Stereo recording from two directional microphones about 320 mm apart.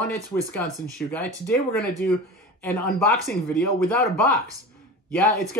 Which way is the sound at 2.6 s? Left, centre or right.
Centre.